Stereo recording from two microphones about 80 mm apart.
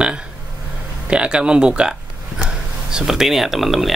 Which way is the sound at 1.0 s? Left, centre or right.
Centre.